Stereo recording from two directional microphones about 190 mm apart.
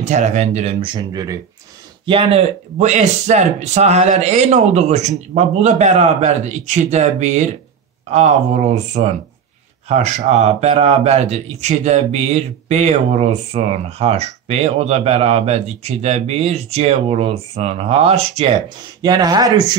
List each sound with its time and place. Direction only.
0.0 s speech: 40° right (ahead or behind); by 1.3 s 20° right (ahead or behind)
2.0 s speech: 30° right (ahead or behind)